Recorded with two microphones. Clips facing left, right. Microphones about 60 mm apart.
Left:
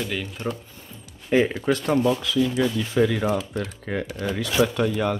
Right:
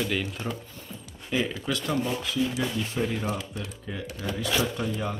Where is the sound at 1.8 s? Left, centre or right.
Left.